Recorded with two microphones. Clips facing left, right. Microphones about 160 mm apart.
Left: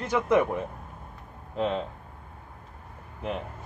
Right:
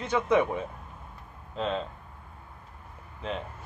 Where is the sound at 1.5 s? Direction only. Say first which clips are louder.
Left 3 dB; 15° left (ahead or behind).